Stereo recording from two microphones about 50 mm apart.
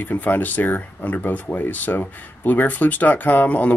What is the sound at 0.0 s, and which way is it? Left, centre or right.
Speech, left.